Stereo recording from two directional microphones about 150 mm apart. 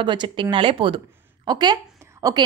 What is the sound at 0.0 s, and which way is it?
A woman's voice, 30° right (ahead or behind).